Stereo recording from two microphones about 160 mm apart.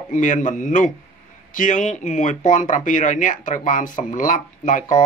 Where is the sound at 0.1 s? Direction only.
50° left (ahead or behind).